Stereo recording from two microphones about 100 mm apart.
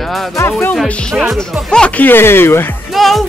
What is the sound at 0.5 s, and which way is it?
Speech, 20° left (ahead or behind).